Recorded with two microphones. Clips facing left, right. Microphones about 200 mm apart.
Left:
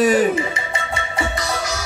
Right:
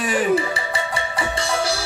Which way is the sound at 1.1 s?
30° right (ahead or behind).